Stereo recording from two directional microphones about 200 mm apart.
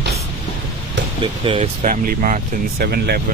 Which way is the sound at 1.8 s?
40° right (ahead or behind).